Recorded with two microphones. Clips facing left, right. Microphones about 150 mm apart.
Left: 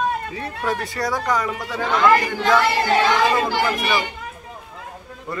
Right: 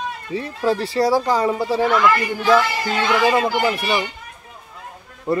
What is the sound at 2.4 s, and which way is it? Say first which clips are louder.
Speech: right 1 dB; 65° left (ahead or behind).